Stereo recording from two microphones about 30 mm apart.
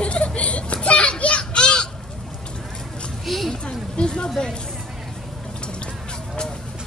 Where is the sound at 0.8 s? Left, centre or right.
Left.